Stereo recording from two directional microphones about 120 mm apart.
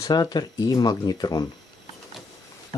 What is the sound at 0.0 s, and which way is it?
Speech, 35° left (ahead or behind).